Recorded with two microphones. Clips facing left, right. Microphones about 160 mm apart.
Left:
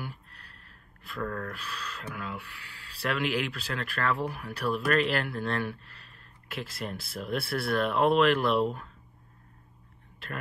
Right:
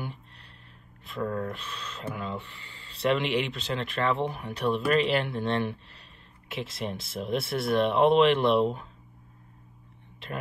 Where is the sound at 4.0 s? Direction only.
20° right (ahead or behind).